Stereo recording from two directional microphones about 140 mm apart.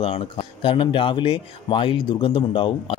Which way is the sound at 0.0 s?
40° left (ahead or behind).